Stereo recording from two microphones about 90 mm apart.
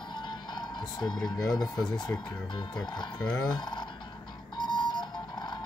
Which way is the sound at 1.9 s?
50° left (ahead or behind).